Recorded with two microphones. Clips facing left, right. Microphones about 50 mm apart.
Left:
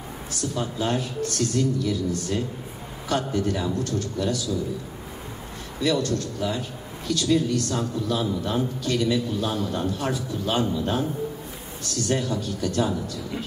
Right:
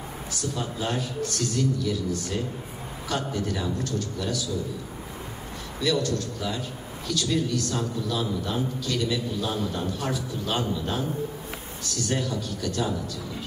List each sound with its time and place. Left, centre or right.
0.4 s a man's voice: left
5.8 s a man's voice: left